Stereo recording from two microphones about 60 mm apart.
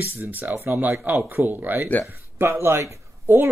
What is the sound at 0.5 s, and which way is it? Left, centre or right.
Speech, right.